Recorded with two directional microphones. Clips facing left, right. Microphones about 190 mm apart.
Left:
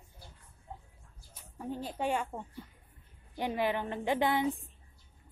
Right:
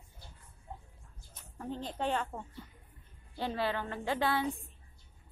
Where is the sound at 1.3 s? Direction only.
10° left (ahead or behind).